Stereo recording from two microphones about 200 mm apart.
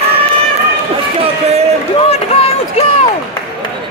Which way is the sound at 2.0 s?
30° left (ahead or behind).